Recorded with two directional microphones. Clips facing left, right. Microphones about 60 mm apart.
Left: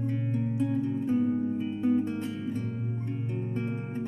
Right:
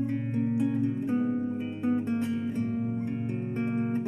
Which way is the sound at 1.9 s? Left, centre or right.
Right.